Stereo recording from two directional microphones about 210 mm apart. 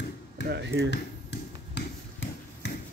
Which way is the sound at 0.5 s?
55° right (ahead or behind).